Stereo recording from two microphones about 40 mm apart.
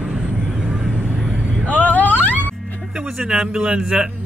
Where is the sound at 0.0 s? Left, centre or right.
Right.